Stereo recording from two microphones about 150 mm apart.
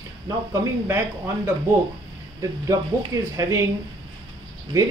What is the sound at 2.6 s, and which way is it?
Speech, 20° right (ahead or behind).